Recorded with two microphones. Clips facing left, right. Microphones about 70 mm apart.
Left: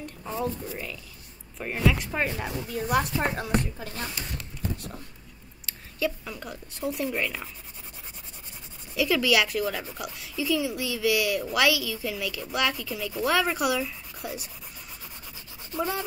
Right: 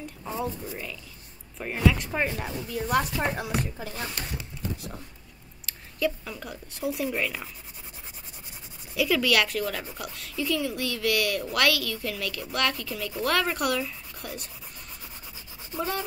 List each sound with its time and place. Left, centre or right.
0.2 s speech: centre
1.6 s a woman's voice: centre
4.4 s a sound: centre
5.7 s speech: centre
8.9 s a woman's voice: centre
15.7 s a woman's voice: centre